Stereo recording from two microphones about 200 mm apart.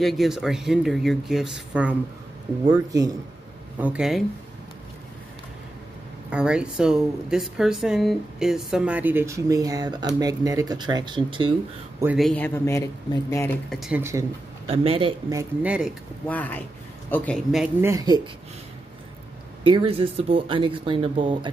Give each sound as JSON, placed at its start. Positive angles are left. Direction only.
{"t": 0.0, "sound": "speech", "side_deg": 0}
{"t": 2.7, "sound": "speech", "side_deg": -15}
{"t": 3.8, "sound": "speech", "side_deg": -5}
{"t": 6.3, "sound": "speech", "side_deg": -5}
{"t": 12.0, "sound": "speech", "side_deg": -5}
{"t": 13.7, "sound": "speech", "side_deg": 0}
{"t": 14.7, "sound": "speech", "side_deg": -30}
{"t": 15.6, "sound": "speech", "side_deg": -5}
{"t": 16.3, "sound": "speech", "side_deg": 10}
{"t": 17.8, "sound": "speech", "side_deg": -20}
{"t": 19.6, "sound": "speech", "side_deg": -25}